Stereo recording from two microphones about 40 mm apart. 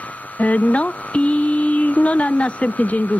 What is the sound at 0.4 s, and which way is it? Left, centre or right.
Speech, left.